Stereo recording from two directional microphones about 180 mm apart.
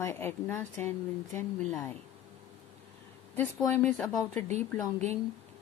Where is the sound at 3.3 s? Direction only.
10° left (ahead or behind).